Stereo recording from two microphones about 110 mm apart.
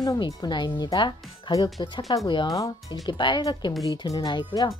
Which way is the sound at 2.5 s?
30° left (ahead or behind).